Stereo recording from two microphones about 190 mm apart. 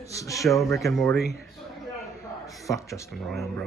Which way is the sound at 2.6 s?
15° left (ahead or behind).